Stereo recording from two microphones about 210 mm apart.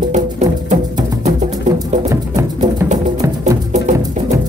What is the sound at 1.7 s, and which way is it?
Music, 35° right (ahead or behind).